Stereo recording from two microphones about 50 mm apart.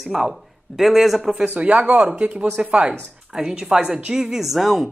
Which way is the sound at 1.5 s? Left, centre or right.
Right.